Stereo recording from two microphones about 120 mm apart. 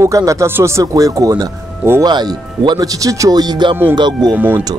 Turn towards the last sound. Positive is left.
turn(degrees=-10)  # may be behind; listen again after turning